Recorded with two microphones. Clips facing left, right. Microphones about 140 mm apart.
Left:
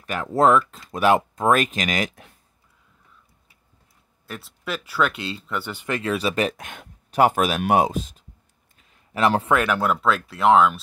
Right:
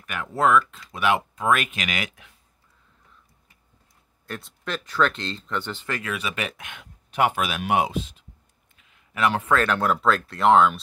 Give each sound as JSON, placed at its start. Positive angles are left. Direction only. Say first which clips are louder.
{"t": 0.0, "sound": "speech", "louder": "left 4 dB", "side_deg": 35}
{"t": 4.3, "sound": "speech", "louder": "left 1 dB", "side_deg": 5}
{"t": 5.9, "sound": "speech", "louder": "left 9 dB", "side_deg": 30}
{"t": 8.7, "sound": "a sound", "louder": "left 4 dB", "side_deg": 35}
{"t": 9.5, "sound": "speech", "louder": "left 1 dB", "side_deg": 10}